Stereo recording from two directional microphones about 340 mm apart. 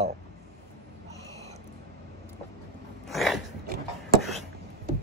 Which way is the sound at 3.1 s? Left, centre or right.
Centre.